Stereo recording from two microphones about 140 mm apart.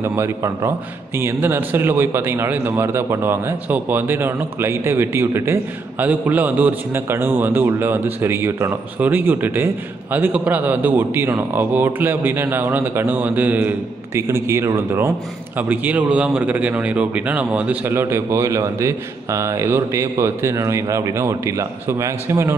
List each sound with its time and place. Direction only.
0.0 s a man's voice: 20° right (ahead or behind)